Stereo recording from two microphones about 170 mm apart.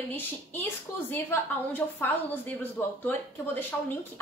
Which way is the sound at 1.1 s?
15° left (ahead or behind).